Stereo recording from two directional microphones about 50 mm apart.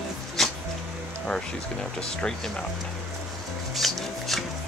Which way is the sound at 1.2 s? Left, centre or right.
Centre.